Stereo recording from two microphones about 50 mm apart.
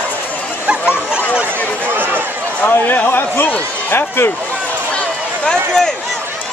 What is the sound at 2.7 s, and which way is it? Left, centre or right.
A man's voice, left.